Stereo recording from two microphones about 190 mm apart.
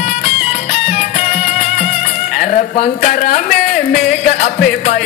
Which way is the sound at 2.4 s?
45° left (ahead or behind).